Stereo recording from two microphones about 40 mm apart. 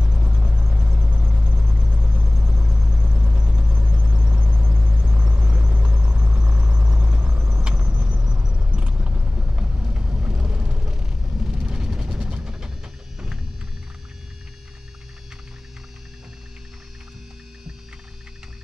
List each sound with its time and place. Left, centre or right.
0.0 s vehicle: right
2.2 s vehicle: centre
3.0 s vehicle: right
3.7 s vehicle: right
5.0 s vehicle: right
10.9 s vehicle: centre
11.6 s a sound: centre